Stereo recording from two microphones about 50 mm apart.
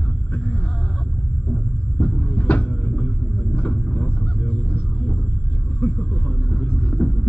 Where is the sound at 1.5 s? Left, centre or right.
Centre.